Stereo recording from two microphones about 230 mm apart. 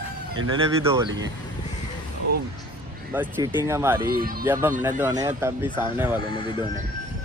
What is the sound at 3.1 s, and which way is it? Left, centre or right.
Speech, centre.